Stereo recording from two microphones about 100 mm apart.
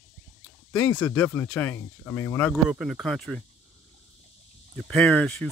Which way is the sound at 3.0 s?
5° left (ahead or behind).